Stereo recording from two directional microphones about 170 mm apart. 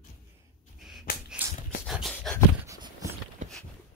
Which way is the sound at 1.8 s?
Centre (ahead or behind).